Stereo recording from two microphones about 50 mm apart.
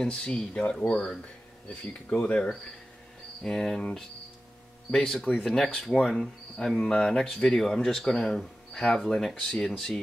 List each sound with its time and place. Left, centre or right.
0.0 s speech: centre
3.4 s speech: centre
4.9 s speech: centre